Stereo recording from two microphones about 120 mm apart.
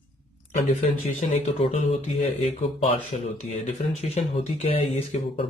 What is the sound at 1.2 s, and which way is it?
Speech, 70° left (ahead or behind).